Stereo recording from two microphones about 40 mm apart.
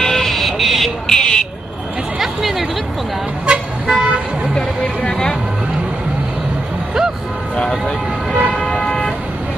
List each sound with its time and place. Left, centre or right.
0.0 s vehicle: centre
1.0 s a sound: centre
2.1 s a sound: centre
3.5 s vehicle: right
3.8 s car: centre
7.7 s vehicle: centre
8.5 s vehicle: left